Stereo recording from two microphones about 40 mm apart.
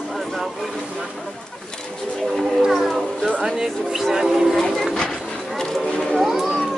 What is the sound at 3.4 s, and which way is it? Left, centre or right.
Music, centre.